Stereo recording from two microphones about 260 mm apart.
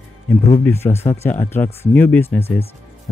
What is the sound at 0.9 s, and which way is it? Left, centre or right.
Speech, left.